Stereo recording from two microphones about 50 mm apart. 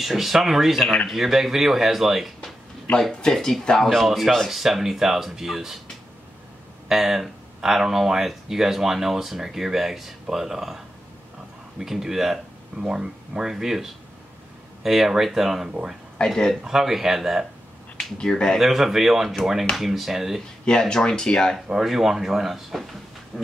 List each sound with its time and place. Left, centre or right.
0.0 s speech: centre
3.0 s speech: centre
6.9 s speech: centre
11.8 s speech: centre
16.3 s speech: centre
16.6 s speech: centre
18.1 s speech: centre
18.6 s speech: centre
20.6 s speech: centre
21.6 s speech: centre
23.3 s a sound: centre